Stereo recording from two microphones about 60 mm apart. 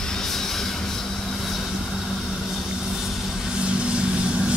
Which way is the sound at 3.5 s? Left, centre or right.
Centre.